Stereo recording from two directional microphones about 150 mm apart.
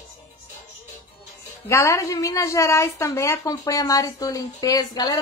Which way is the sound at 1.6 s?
20° left (ahead or behind).